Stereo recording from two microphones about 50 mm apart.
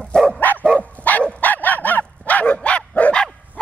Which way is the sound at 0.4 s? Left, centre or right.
Left.